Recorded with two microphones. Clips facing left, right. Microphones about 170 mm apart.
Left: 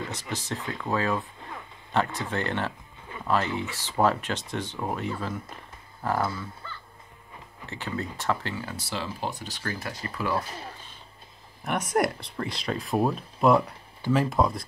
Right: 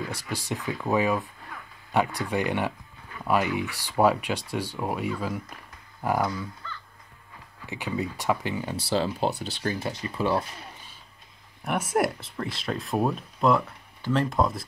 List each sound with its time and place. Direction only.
0.1 s speech: 10° right (ahead or behind)
7.6 s speech: 10° right (ahead or behind)
8.7 s speech: 35° right (ahead or behind)
11.6 s speech: 5° right (ahead or behind)